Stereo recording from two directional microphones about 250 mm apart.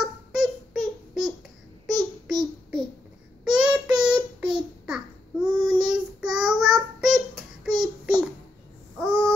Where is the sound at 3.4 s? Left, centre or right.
Centre.